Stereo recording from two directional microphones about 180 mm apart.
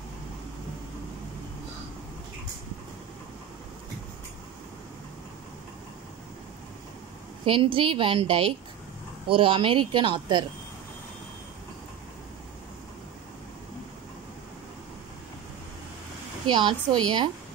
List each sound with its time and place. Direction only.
7.4 s a woman's voice: 30° right (ahead or behind)
16.4 s a woman's voice: 25° right (ahead or behind)